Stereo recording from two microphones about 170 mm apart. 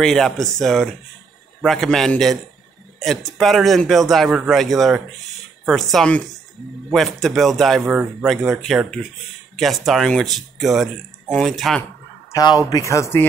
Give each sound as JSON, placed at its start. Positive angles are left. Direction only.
{"t": 0.0, "sound": "speech", "side_deg": 5}
{"t": 12.6, "sound": "speech", "side_deg": 20}